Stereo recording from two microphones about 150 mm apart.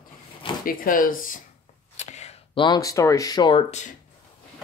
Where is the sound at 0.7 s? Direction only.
65° left (ahead or behind).